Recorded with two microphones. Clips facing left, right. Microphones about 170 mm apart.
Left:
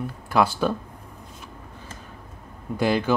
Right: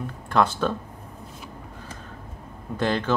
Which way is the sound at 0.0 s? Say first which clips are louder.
Left 1 dB; 10° left (ahead or behind).